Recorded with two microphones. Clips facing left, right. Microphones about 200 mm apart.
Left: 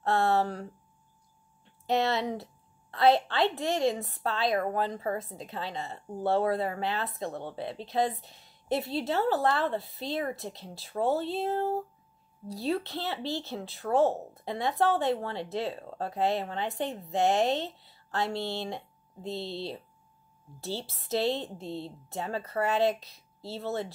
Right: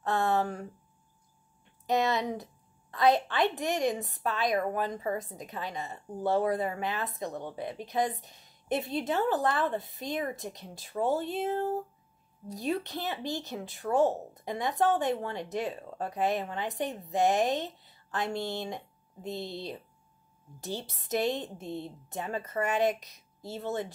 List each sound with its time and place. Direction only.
0.0 s a woman's voice: 15° right (ahead or behind)
1.9 s a woman's voice: 15° right (ahead or behind)
12.4 s a woman's voice: 15° right (ahead or behind)